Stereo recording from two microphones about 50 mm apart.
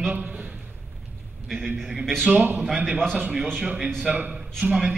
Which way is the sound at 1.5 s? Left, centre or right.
Centre.